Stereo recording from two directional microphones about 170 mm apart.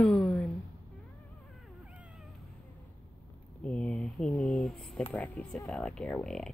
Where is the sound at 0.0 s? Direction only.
5° left (ahead or behind).